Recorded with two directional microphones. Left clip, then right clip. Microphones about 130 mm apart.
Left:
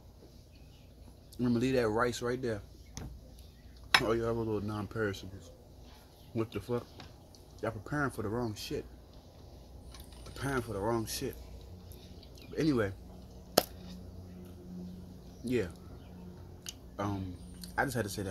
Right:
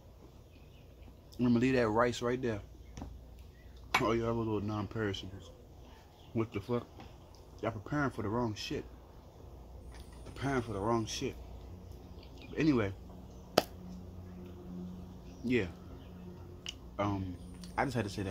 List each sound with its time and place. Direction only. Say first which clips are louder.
1.4 s speech: even; 15° right (ahead or behind)
3.0 s a sound: left 1 dB; 40° left (ahead or behind)
4.0 s speech: left 1 dB; 10° right (ahead or behind)
6.3 s speech: even; 15° right (ahead or behind)
10.4 s speech: even; 5° right (ahead or behind)
12.5 s speech: even; 10° right (ahead or behind)
13.6 s a sound: left 1 dB; 5° left (ahead or behind)
15.4 s speech: even; 10° right (ahead or behind)
16.6 s a sound: right 2 dB; 10° right (ahead or behind)